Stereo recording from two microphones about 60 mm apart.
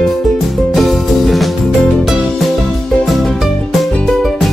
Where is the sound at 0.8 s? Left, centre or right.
Centre.